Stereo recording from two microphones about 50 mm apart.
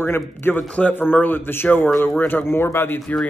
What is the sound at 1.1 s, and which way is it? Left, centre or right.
Speech, left.